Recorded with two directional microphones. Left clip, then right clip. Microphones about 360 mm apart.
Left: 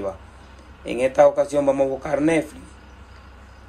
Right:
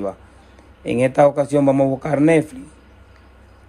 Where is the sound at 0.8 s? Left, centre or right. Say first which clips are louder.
Right 1 dB; centre.